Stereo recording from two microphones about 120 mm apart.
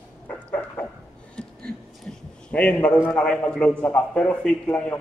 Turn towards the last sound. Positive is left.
turn(degrees=10)  # may be behind; listen again after turning